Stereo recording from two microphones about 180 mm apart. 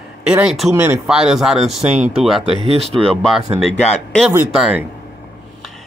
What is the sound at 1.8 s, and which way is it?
Speech, 40° right (ahead or behind).